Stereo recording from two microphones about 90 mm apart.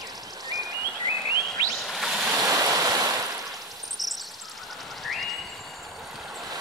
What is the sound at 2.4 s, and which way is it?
Stream, 40° right (ahead or behind).